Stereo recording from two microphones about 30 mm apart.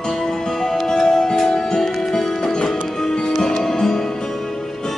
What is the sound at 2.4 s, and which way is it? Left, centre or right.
Music, left.